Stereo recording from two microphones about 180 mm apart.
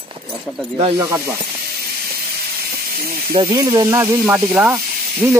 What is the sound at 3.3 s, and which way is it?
Speech, 20° right (ahead or behind).